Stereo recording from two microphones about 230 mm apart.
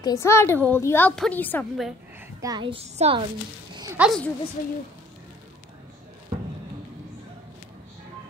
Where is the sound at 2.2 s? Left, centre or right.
Centre.